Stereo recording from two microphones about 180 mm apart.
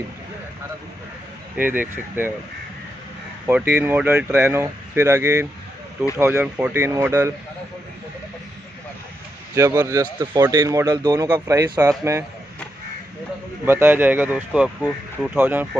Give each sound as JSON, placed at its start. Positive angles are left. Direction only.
{"t": 1.6, "sound": "a man's voice", "side_deg": -10}
{"t": 3.4, "sound": "a man's voice", "side_deg": -10}
{"t": 9.6, "sound": "a man's voice", "side_deg": -15}
{"t": 13.7, "sound": "a man's voice", "side_deg": -10}